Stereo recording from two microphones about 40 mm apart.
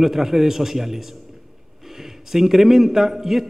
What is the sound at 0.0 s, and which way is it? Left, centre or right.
A man's voice, centre.